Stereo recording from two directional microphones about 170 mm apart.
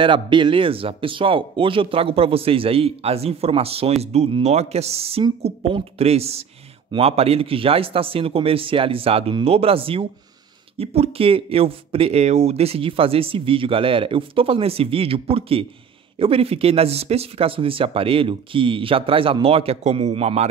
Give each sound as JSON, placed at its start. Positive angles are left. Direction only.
{"t": 0.0, "sound": "speech", "side_deg": -30}